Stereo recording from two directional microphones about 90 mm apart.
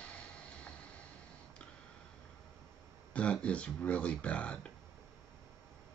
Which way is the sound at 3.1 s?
15° left (ahead or behind).